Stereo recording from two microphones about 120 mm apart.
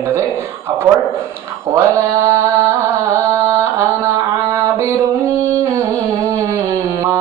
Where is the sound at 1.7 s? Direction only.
25° right (ahead or behind).